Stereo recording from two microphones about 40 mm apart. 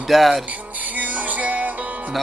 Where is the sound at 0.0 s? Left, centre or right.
Centre.